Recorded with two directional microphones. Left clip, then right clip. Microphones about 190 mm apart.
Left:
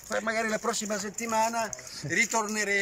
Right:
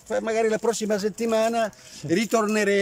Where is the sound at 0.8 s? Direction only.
55° right (ahead or behind).